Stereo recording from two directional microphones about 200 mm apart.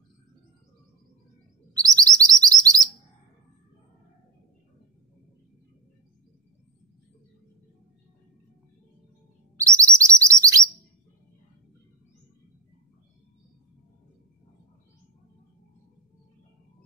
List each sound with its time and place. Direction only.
2.0 s chirp: 20° right (ahead or behind)
9.6 s chirp: 15° right (ahead or behind)